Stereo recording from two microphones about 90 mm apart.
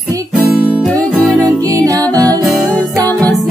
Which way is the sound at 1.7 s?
40° right (ahead or behind).